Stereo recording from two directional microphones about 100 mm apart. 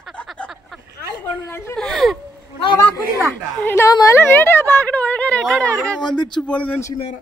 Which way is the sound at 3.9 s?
40° left (ahead or behind).